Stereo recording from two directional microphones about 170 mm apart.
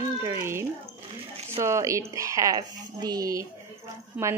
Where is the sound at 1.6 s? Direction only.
15° right (ahead or behind).